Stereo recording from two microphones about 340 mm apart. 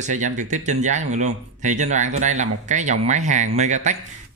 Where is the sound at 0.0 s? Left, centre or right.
Right.